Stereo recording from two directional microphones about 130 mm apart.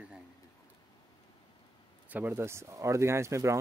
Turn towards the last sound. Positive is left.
turn(degrees=-20)  # may be behind; listen again after turning